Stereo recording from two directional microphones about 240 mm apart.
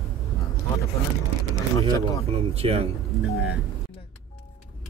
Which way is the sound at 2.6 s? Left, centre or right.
Right.